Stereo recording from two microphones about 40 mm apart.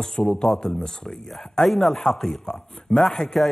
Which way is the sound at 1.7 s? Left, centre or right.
Centre.